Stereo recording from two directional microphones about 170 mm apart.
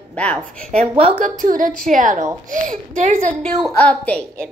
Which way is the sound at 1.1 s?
50° right (ahead or behind).